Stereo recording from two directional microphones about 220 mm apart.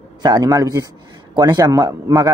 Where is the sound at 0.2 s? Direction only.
15° right (ahead or behind).